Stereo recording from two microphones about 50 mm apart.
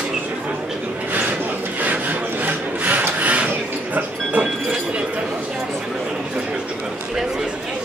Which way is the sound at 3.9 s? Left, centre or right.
Right.